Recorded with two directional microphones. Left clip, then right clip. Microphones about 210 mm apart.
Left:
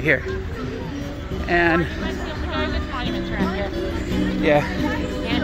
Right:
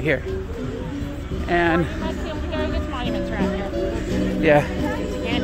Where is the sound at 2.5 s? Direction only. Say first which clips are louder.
Left 1 dB; 50° right (ahead or behind).